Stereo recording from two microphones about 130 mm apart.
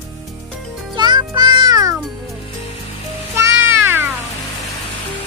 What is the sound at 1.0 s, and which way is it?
Music, 35° right (ahead or behind).